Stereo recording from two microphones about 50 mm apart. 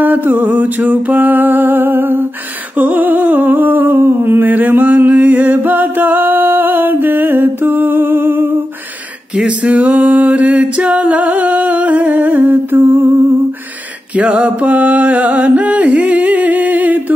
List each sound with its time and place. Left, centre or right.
0.0 s music: right
2.8 s humming: right
9.7 s music: right
14.1 s mantra: right